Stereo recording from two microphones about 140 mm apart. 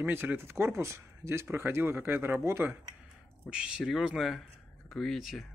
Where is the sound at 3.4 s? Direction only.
5° right (ahead or behind).